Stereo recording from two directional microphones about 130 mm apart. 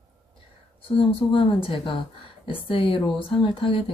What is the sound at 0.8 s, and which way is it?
A woman's voice, 40° left (ahead or behind).